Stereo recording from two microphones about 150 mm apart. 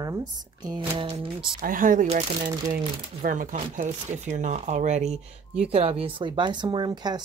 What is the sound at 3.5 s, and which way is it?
Speech, 50° right (ahead or behind).